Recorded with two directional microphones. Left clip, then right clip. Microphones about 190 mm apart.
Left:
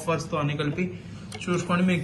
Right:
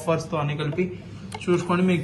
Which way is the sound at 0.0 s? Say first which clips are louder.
Right 2 dB; 50° right (ahead or behind).